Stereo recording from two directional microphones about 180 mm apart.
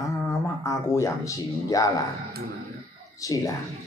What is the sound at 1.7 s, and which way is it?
Speech, 20° left (ahead or behind).